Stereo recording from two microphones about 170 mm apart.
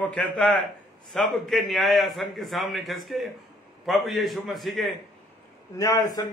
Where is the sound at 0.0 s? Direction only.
5° left (ahead or behind).